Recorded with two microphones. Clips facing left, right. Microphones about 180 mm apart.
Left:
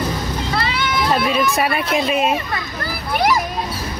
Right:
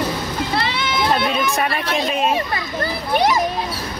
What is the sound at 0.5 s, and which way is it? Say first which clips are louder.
Boat: left 1 dB; 25° right (ahead or behind).